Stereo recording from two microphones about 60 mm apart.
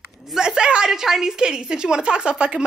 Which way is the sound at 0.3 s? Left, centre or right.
Centre.